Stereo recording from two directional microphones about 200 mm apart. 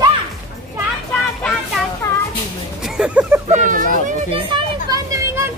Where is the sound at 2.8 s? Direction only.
5° right (ahead or behind).